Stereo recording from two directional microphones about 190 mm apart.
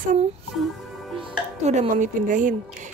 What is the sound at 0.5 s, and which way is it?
Music, centre (ahead or behind).